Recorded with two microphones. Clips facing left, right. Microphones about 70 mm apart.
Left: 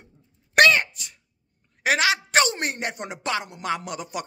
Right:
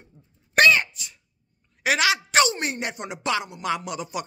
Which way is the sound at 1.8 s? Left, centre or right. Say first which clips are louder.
Even; left.